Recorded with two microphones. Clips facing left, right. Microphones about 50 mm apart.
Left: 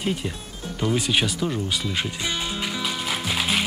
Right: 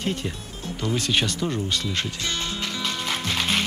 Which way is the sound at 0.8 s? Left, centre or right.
Centre.